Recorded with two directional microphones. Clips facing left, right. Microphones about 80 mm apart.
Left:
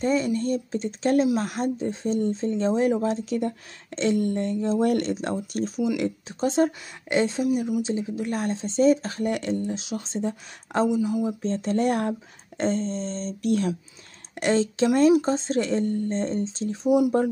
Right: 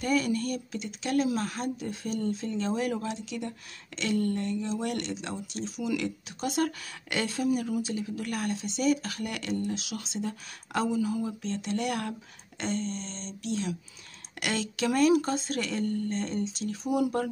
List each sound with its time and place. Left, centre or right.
0.0 s speech: left
5.9 s speech: left
10.9 s speech: centre
11.4 s speech: left
14.3 s speech: left